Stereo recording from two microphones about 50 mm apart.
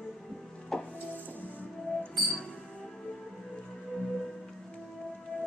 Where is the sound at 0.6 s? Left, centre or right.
Centre.